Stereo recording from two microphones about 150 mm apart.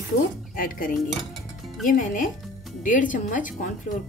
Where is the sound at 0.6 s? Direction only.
70° left (ahead or behind).